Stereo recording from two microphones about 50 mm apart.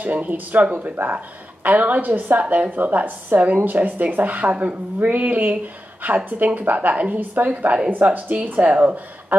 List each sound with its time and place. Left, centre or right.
0.0 s speech: right